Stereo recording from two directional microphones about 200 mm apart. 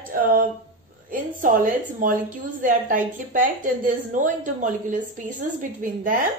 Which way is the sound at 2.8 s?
45° right (ahead or behind).